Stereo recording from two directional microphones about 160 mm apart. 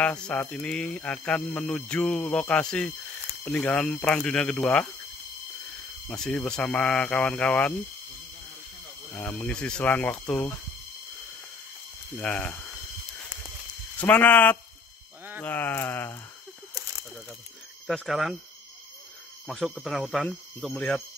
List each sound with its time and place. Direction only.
0.0 s speech: 5° left (ahead or behind)
6.0 s speech: 5° left (ahead or behind)
9.1 s speech: 10° left (ahead or behind)
12.2 s speech: 5° left (ahead or behind)
13.9 s speech: 10° left (ahead or behind)
17.8 s speech: centre (ahead or behind)
19.4 s speech: centre (ahead or behind)